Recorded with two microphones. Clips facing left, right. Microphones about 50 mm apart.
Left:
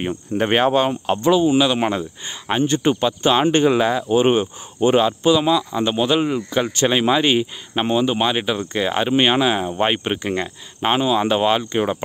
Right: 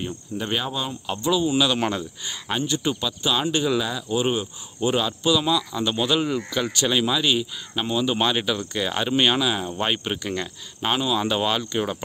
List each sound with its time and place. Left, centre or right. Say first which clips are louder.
0.0 s speech: left 8 dB; left
1.2 s speech: left 5 dB; left
2.6 s speech: left 9 dB; left
8.1 s speech: left 3 dB; centre